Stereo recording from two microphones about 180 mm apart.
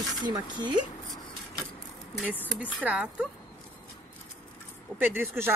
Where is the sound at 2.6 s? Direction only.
10° right (ahead or behind).